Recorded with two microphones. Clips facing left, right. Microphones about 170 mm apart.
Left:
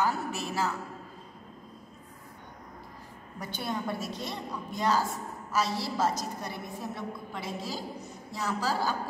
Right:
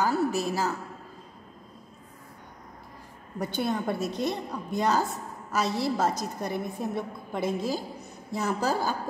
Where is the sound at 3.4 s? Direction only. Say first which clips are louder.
Right 6 dB; 55° right (ahead or behind).